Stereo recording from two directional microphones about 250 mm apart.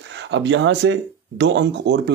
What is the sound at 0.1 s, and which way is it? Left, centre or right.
Speech, right.